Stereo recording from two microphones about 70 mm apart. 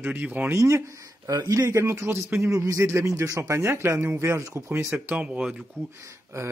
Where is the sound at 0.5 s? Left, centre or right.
Right.